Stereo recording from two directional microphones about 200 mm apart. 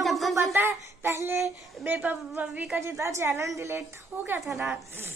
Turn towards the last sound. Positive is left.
turn(degrees=0)  # may be behind; listen again after turning